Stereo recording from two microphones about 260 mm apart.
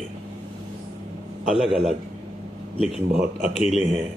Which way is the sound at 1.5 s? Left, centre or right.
Centre.